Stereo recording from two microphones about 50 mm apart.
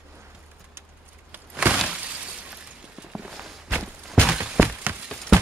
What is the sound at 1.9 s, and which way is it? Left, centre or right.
Shatter, right.